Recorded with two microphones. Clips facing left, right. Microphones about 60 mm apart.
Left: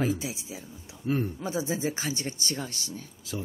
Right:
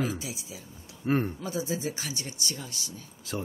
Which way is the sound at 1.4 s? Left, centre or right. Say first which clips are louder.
Left 2 dB; left.